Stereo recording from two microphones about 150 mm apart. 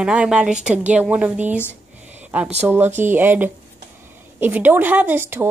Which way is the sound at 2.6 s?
15° right (ahead or behind).